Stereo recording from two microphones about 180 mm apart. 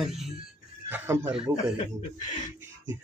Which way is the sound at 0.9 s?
10° right (ahead or behind).